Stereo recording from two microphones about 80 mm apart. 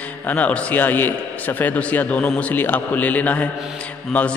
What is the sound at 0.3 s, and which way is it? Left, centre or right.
A man's voice, centre.